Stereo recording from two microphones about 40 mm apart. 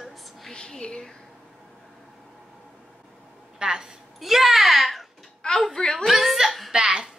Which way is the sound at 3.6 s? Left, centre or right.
Centre.